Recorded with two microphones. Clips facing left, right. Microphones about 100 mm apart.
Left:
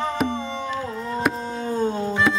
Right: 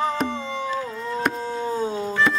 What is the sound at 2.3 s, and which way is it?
Music, 5° left (ahead or behind).